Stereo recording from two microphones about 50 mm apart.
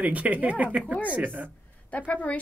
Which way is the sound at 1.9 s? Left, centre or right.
Left.